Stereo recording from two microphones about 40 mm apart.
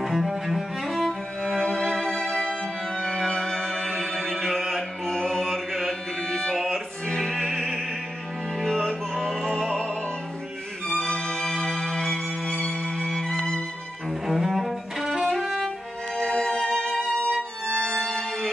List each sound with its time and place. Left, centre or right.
0.0 s cello: centre
1.6 s music: centre
5.0 s music: centre
6.5 s music: centre
9.2 s music: centre
10.9 s music: centre
14.2 s cello: centre
15.3 s violin: centre
16.2 s music: centre
17.2 s violin: left